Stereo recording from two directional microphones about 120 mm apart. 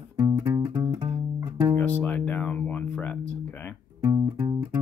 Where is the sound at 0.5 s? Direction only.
40° right (ahead or behind).